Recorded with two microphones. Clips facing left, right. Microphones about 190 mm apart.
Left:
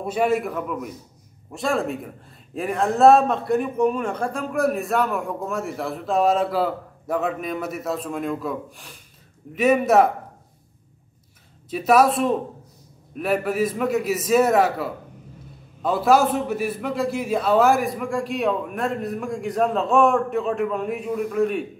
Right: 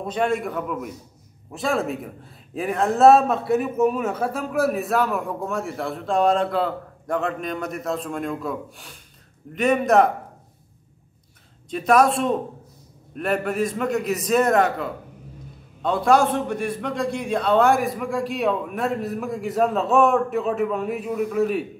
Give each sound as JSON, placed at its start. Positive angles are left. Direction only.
{"t": 0.0, "sound": "a man's voice", "side_deg": 10}
{"t": 11.7, "sound": "a man's voice", "side_deg": 5}